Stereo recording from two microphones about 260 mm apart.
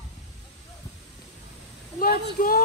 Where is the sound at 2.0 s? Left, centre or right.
Left.